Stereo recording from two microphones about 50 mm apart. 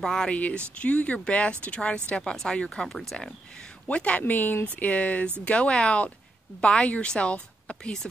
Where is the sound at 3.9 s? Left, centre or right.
Left.